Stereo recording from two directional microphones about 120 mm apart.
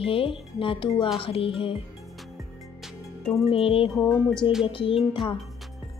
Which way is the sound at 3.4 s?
50° left (ahead or behind).